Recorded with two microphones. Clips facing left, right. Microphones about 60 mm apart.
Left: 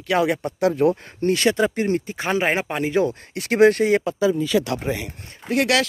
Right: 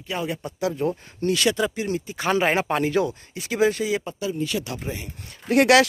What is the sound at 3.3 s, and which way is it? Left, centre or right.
Speech, left.